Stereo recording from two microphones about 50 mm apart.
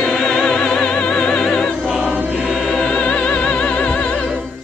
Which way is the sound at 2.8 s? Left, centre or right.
Centre.